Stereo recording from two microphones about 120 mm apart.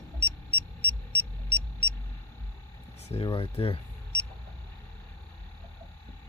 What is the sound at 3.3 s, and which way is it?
Speech, 50° left (ahead or behind).